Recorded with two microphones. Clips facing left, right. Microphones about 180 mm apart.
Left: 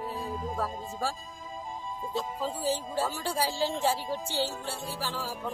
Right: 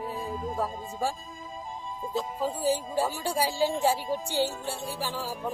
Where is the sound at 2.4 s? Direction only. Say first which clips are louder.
Right 5 dB; 15° right (ahead or behind).